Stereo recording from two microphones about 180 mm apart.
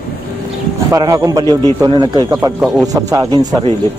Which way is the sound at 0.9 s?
20° right (ahead or behind).